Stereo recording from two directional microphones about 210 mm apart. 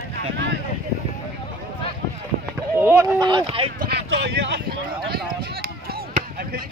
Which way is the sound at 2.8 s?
10° right (ahead or behind).